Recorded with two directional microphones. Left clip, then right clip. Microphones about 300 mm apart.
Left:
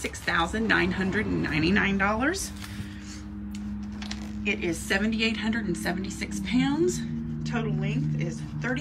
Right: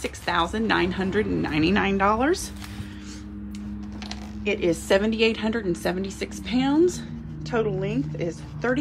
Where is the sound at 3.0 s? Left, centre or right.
Right.